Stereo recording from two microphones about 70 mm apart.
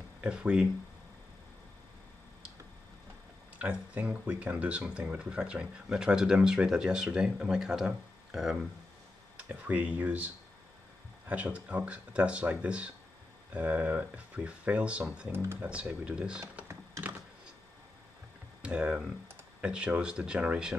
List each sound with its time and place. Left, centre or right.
0.2 s speech: centre
3.9 s speech: right; by 8.5 s centre
9.4 s speech: right
15.3 s speech: right
15.6 s speech: centre
18.6 s speech: centre